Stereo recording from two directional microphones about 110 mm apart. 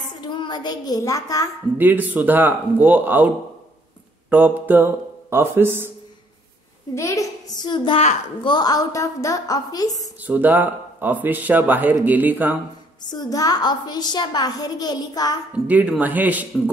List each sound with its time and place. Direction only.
0.2 s a child's voice: 40° left (ahead or behind)
1.8 s speech: 15° right (ahead or behind)
4.3 s speech: 15° right (ahead or behind)
7.0 s a woman's voice: 30° left (ahead or behind)
7.6 s a child's voice: 45° left (ahead or behind)
10.2 s speech: 15° right (ahead or behind)
13.0 s a woman's voice: 40° left (ahead or behind)
15.5 s speech: 10° right (ahead or behind)